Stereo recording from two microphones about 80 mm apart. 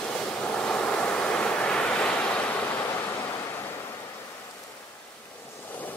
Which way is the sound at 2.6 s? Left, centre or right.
Left.